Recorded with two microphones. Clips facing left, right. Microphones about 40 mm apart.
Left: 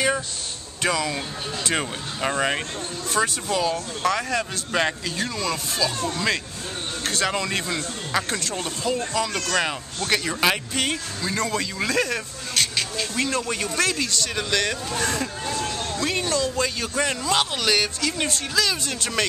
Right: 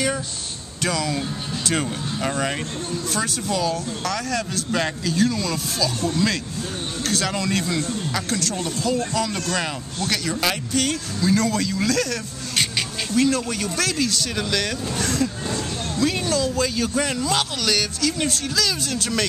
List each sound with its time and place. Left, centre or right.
0.8 s speech: centre